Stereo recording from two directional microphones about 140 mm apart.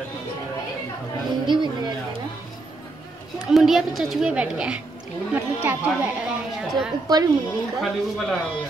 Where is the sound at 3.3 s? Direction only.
Centre (ahead or behind).